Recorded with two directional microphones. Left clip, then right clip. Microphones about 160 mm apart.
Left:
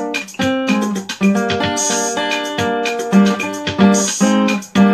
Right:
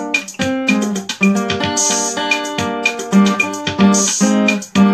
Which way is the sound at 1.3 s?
20° left (ahead or behind).